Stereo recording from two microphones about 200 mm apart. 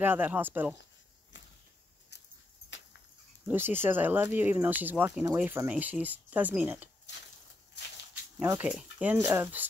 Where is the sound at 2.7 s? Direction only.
65° left (ahead or behind).